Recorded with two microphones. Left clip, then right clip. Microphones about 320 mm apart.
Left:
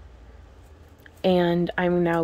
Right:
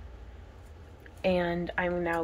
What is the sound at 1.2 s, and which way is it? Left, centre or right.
Speech, left.